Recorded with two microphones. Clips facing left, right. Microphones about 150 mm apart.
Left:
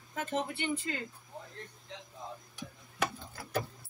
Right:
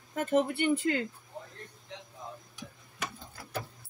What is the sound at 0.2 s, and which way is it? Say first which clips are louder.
Speech: right 7 dB; 55° right (ahead or behind).